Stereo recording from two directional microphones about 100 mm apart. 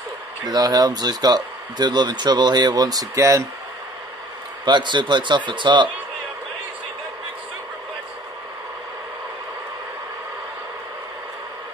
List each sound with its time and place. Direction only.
0.5 s speech: 40° right (ahead or behind)
4.6 s speech: 50° right (ahead or behind)